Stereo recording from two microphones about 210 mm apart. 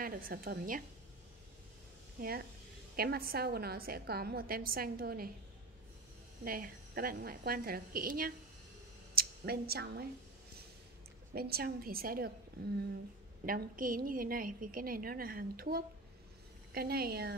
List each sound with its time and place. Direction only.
0.0 s a woman's voice: 45° right (ahead or behind)
2.1 s a woman's voice: 45° right (ahead or behind)
6.4 s a woman's voice: 45° right (ahead or behind)
11.3 s a woman's voice: 45° right (ahead or behind)
13.5 s a woman's voice: 40° right (ahead or behind)